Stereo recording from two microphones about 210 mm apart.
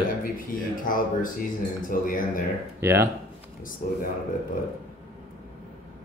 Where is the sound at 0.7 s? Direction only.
40° left (ahead or behind).